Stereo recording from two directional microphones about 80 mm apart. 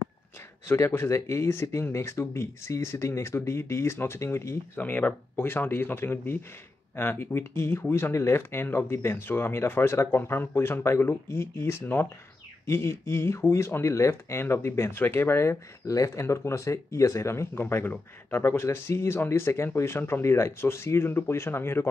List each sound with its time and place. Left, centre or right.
0.7 s speech: left
4.7 s speech: left